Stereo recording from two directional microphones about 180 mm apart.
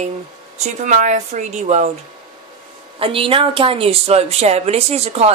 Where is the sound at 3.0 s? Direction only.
30° right (ahead or behind).